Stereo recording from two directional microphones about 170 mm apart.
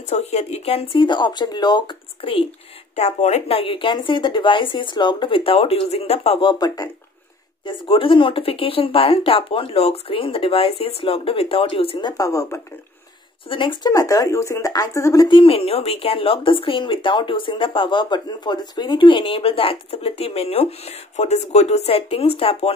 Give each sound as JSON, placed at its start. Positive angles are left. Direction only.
{"t": 0.0, "sound": "speech", "side_deg": 40}
{"t": 3.0, "sound": "speech", "side_deg": 40}
{"t": 12.1, "sound": "speech", "side_deg": 20}
{"t": 13.5, "sound": "speech", "side_deg": 30}
{"t": 15.2, "sound": "speech", "side_deg": 30}